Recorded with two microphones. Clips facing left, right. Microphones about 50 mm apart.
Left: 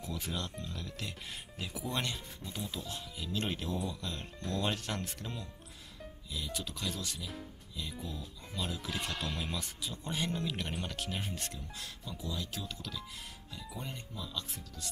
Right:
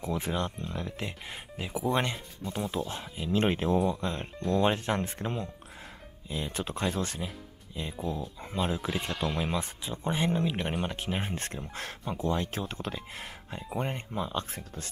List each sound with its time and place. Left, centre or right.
0.0 s speech: right